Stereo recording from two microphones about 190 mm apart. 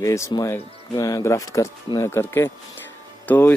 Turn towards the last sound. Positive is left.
turn(degrees=10)  # may be behind; listen again after turning